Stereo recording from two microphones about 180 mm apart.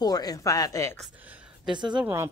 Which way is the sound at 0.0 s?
20° left (ahead or behind).